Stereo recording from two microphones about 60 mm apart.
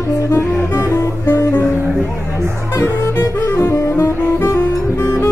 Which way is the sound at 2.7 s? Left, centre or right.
Left.